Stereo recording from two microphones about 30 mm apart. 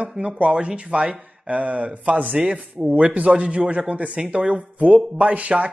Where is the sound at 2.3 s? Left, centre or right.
Right.